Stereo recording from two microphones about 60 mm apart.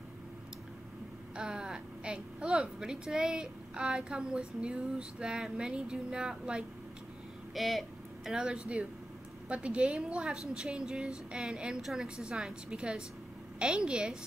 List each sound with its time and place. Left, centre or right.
1.3 s a woman's voice: centre
7.5 s speech: centre
8.3 s a woman's voice: centre